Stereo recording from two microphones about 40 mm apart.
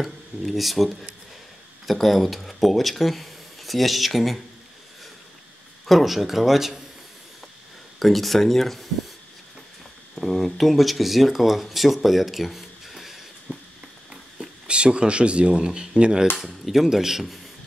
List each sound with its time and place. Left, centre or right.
0.0 s speech: centre
5.9 s speech: centre
8.0 s speech: centre
10.1 s speech: centre
14.7 s speech: right
16.3 s speech: centre